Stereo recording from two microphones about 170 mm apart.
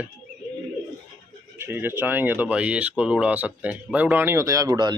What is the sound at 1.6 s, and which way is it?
Speech, 15° right (ahead or behind).